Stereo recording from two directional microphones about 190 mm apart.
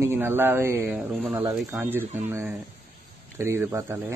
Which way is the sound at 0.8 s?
Centre (ahead or behind).